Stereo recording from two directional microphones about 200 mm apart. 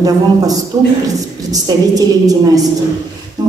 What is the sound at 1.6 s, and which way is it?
A woman's voice, 20° right (ahead or behind).